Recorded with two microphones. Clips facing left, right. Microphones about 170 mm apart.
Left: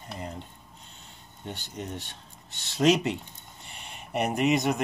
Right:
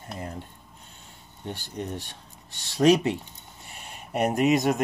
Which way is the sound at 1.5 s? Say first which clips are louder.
Right 3 dB; centre (ahead or behind).